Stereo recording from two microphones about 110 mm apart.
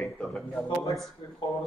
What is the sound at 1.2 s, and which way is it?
Speech, 55° left (ahead or behind).